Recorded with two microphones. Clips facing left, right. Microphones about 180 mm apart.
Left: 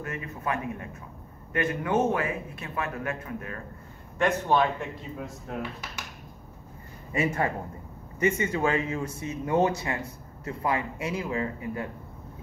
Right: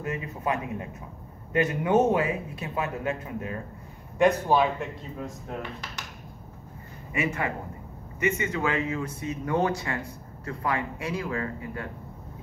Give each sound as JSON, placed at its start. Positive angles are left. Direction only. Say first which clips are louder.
{"t": 0.0, "sound": "speech", "louder": "right 3 dB", "side_deg": -20}
{"t": 4.2, "sound": "a man's voice", "louder": "right 3 dB", "side_deg": -5}
{"t": 5.6, "sound": "speech", "louder": "left 1 dB", "side_deg": 5}
{"t": 7.1, "sound": "a man's voice", "louder": "left 2 dB", "side_deg": 35}